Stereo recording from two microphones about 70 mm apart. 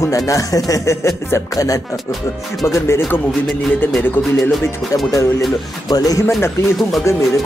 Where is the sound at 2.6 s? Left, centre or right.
Left.